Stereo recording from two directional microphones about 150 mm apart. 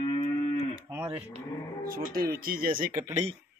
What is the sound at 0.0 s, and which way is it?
Moo, 35° left (ahead or behind).